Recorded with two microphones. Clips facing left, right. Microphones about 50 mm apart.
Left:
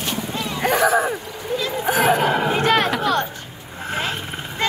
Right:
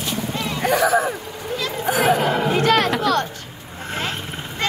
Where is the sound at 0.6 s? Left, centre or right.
Left.